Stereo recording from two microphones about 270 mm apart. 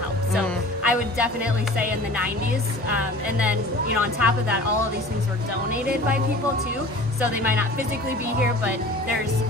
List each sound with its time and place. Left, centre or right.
0.8 s music: centre
2.9 s speech: centre